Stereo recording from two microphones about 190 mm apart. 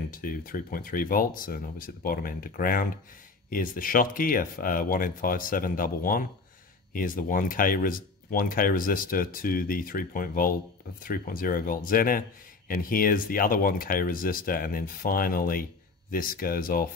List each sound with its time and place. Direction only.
0.1 s speech: 45° left (ahead or behind)